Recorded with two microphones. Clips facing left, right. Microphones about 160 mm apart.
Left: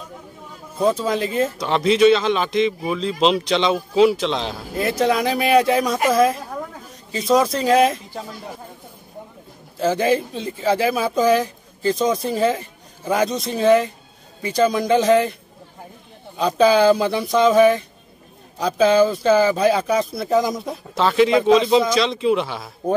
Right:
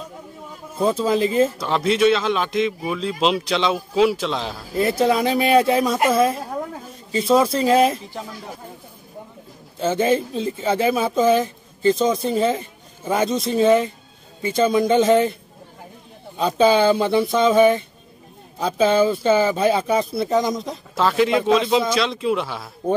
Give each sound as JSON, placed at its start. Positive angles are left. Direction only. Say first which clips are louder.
{"t": 0.7, "sound": "speech", "louder": "even", "side_deg": -5}
{"t": 9.8, "sound": "speech", "louder": "even", "side_deg": 0}
{"t": 16.3, "sound": "speech", "louder": "left 1 dB", "side_deg": 0}